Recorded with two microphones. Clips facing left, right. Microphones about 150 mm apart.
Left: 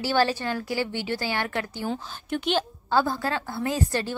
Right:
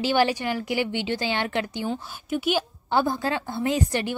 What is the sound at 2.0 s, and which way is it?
A woman's voice, 10° right (ahead or behind).